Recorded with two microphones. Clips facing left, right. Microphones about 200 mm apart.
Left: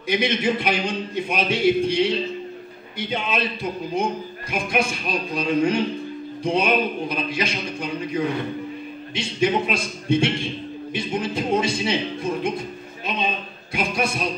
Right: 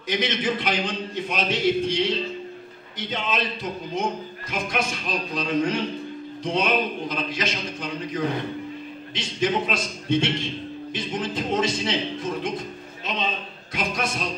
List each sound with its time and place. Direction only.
0.1 s a man's voice: 10° left (ahead or behind)